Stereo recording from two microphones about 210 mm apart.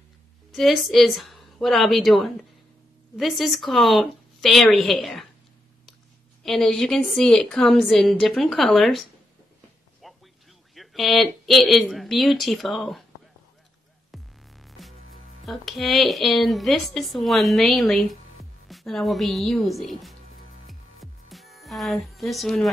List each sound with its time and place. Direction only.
0.5 s a woman's voice: centre (ahead or behind)
6.4 s a woman's voice: centre (ahead or behind)
10.0 s music: centre (ahead or behind)
10.7 s a woman's voice: centre (ahead or behind)
14.1 s music: centre (ahead or behind)